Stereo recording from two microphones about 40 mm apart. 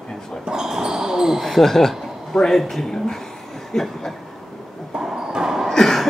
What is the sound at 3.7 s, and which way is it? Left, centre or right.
Chuckle, centre.